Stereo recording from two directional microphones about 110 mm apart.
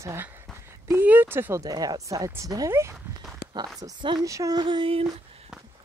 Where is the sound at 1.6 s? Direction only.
35° right (ahead or behind).